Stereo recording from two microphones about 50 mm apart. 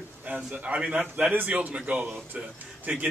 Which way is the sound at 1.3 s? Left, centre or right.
Right.